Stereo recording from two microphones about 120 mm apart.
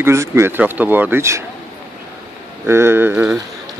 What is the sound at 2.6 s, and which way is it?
Speech, 20° right (ahead or behind).